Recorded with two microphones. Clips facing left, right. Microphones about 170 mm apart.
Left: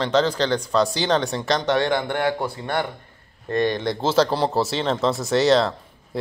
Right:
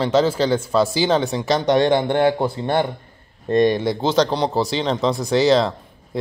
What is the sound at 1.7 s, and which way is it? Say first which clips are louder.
Speech: right 5 dB; 25° right (ahead or behind).